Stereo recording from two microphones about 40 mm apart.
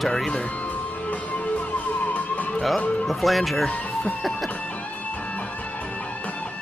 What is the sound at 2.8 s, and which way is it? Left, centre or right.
Speech, left.